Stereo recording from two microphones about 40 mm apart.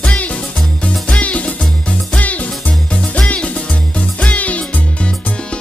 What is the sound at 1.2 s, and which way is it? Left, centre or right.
Music, left.